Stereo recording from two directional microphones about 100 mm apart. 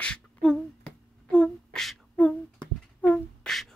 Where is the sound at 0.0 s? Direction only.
10° left (ahead or behind).